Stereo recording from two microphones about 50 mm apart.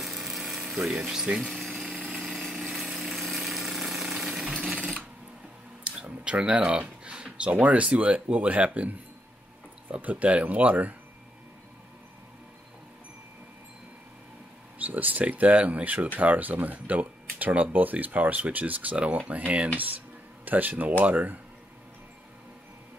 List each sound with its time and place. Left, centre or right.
0.0 s ratchet: centre
1.4 s power tool: centre
2.0 s engine: centre
2.3 s a sound: centre
5.9 s speech: right
10.0 s speech: right
14.8 s speech: right